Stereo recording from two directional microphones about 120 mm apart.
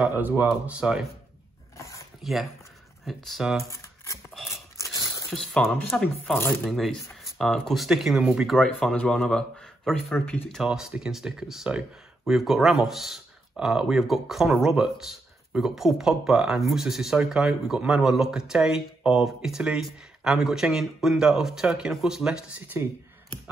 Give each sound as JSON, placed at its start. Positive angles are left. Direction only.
{"t": 0.0, "sound": "speech", "side_deg": -15}
{"t": 1.8, "sound": "zipper", "side_deg": 25}
{"t": 3.1, "sound": "speech", "side_deg": 0}
{"t": 3.7, "sound": "a sound", "side_deg": 25}
{"t": 5.3, "sound": "speech", "side_deg": 5}
{"t": 10.5, "sound": "speech", "side_deg": -5}